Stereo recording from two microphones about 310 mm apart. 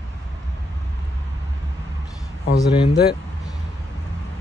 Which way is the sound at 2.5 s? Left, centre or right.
Centre.